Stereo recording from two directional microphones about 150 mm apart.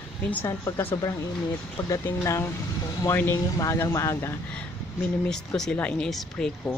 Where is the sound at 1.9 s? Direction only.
20° left (ahead or behind); by 6.8 s 5° left (ahead or behind).